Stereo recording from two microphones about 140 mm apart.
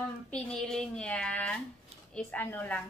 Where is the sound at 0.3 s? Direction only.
5° left (ahead or behind).